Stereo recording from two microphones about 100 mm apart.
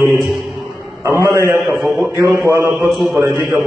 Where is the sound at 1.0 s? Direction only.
30° right (ahead or behind).